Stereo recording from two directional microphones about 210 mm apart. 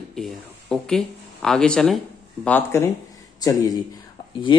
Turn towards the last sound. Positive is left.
turn(degrees=20)  # may be behind; listen again after turning